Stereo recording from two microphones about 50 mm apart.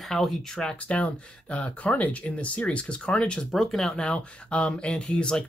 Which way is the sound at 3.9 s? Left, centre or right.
Centre.